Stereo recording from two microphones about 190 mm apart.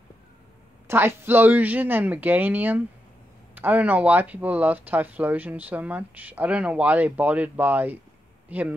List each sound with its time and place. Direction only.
0.8 s speech: 10° right (ahead or behind)